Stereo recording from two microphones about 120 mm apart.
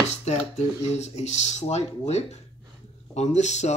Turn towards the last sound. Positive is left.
turn(degrees=70)  # may be behind; listen again after turning